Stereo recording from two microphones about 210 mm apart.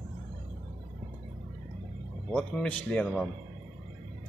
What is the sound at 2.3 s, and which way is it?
A man's voice, 5° left (ahead or behind).